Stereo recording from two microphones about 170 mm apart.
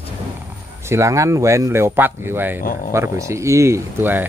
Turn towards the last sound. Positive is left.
turn(degrees=-10)  # may be behind; listen again after turning